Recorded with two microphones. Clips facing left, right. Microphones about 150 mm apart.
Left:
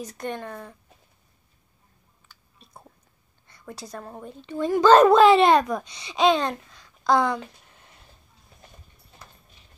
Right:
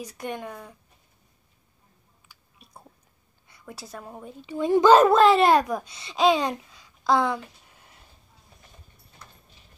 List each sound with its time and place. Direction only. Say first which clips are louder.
0.0 s speech: left 1 dB; 10° right (ahead or behind)
2.3 s chewing: left 1 dB; 10° right (ahead or behind)
3.4 s a woman's voice: left 3 dB; 5° right (ahead or behind)